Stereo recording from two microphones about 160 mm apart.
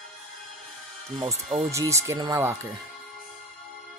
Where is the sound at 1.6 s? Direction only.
20° right (ahead or behind).